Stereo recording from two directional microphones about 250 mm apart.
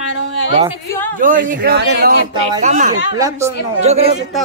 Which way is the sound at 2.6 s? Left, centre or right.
Right.